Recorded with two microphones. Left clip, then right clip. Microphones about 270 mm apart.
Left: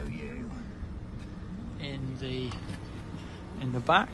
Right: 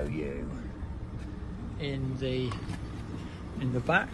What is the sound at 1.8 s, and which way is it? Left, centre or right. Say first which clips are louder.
Speech: right 5 dB; centre.